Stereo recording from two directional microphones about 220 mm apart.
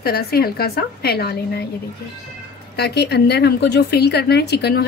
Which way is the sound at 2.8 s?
50° left (ahead or behind).